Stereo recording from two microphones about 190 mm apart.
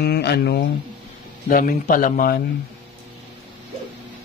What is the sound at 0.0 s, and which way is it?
Speech, 60° left (ahead or behind).